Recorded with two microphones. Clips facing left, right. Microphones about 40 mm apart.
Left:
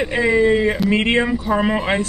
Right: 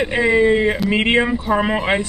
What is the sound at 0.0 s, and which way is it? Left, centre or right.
Speech, centre.